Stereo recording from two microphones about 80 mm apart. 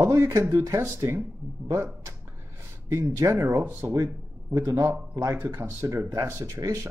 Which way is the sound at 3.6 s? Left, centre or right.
Right.